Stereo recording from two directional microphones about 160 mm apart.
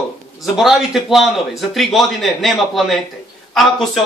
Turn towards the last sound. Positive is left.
turn(degrees=0)  # may be behind; listen again after turning